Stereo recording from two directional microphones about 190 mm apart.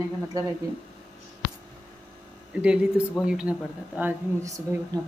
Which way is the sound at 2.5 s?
5° right (ahead or behind).